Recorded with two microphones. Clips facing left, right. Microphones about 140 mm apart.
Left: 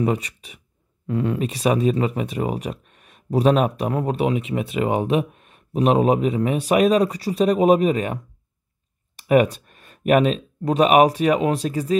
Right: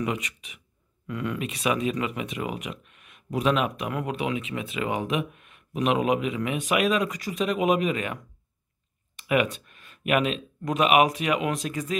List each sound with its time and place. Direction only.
0.0 s speech: 35° left (ahead or behind)
9.3 s speech: 35° left (ahead or behind)